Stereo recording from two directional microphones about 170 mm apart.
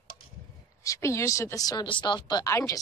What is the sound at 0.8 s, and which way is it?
Speech, 15° left (ahead or behind).